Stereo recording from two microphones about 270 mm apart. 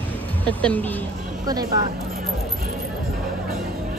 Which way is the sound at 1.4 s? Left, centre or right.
Centre.